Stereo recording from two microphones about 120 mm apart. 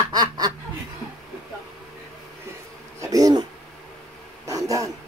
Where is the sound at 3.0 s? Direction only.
30° right (ahead or behind).